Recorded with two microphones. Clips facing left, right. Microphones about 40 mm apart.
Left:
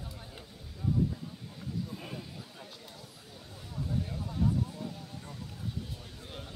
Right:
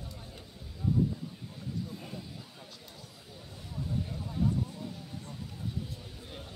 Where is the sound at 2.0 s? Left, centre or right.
Centre.